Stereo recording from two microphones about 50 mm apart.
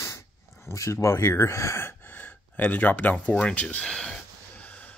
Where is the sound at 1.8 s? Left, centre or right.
Left.